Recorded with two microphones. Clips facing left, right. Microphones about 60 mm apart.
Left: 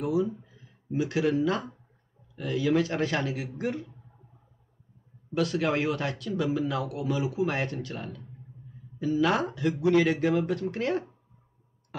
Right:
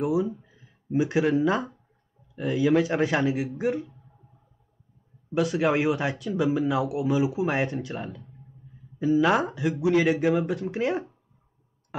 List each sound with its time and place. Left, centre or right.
0.0 s speech: centre
5.3 s speech: centre